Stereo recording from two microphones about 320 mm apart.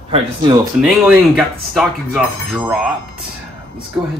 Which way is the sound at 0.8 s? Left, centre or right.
Centre.